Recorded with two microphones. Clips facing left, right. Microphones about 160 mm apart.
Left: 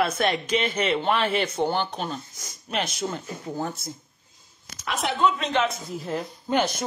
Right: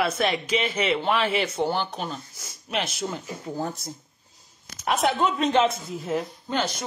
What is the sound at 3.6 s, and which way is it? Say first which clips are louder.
Speech: even; 35° right (ahead or behind).